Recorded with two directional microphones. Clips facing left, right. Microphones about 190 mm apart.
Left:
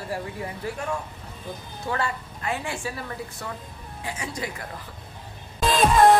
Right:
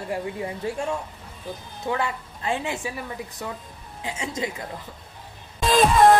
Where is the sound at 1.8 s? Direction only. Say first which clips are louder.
Right 2 dB; 20° right (ahead or behind).